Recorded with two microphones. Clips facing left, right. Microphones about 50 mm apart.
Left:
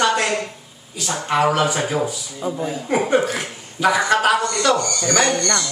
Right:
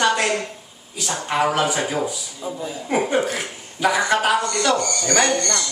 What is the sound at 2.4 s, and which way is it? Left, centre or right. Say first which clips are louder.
Speech: left 5 dB; left.